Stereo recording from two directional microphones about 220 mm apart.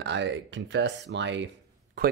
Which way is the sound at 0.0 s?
55° right (ahead or behind).